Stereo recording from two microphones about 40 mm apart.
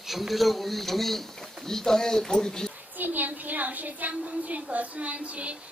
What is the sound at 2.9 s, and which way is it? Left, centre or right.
A woman's voice, right.